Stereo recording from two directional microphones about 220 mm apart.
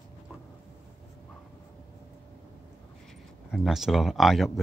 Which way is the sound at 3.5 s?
Centre (ahead or behind).